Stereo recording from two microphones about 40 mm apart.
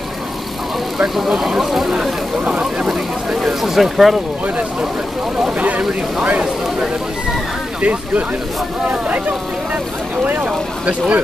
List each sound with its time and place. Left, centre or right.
0.9 s speech: centre
2.4 s speech: right
2.9 s a sound: centre
5.6 s vehicle: right
7.8 s speech: right
10.4 s speech: right